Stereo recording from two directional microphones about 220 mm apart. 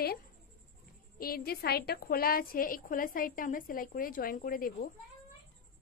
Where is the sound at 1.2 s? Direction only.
40° left (ahead or behind).